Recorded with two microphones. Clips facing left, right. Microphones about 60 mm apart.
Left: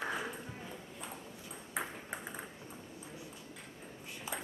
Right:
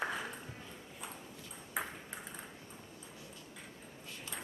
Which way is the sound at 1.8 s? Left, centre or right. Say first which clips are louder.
Even; centre.